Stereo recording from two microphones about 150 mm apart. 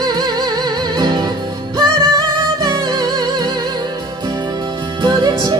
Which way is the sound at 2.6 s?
25° right (ahead or behind).